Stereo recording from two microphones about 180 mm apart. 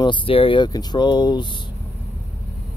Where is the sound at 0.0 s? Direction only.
30° left (ahead or behind).